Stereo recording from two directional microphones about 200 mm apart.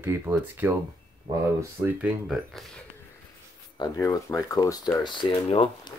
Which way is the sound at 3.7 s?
20° left (ahead or behind).